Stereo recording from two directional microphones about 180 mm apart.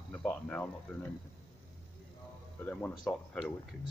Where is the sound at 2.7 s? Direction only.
10° left (ahead or behind).